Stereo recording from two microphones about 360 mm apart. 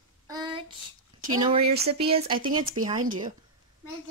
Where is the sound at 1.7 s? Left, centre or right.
Right.